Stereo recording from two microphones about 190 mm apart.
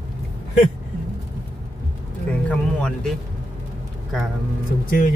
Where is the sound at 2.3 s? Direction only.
5° left (ahead or behind).